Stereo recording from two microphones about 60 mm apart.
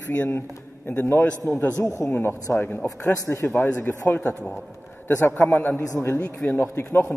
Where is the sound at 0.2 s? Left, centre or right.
Left.